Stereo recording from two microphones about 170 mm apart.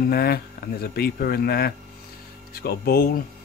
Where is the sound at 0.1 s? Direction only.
65° left (ahead or behind).